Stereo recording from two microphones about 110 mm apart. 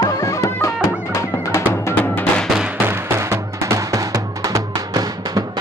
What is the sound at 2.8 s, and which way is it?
Music, 25° right (ahead or behind).